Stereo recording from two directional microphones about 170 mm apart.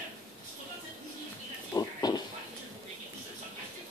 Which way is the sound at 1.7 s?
25° left (ahead or behind).